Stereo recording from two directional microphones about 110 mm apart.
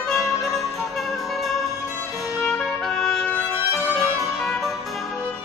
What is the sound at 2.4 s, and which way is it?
Music, 5° left (ahead or behind).